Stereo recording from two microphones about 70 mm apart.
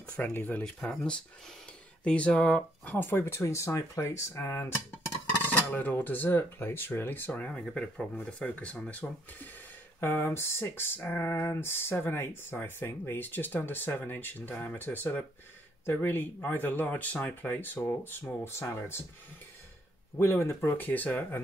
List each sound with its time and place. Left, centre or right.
0.2 s speech: left
0.7 s speech: centre; by 4.7 s left
5.5 s speech: left
7.6 s speech: centre
9.9 s speech: left
20.2 s speech: left
20.7 s speech: left